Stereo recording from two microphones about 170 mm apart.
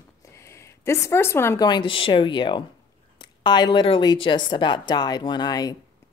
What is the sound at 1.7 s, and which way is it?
A woman's voice, 30° left (ahead or behind).